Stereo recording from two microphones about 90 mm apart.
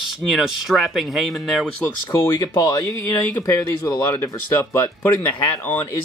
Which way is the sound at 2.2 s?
45° left (ahead or behind).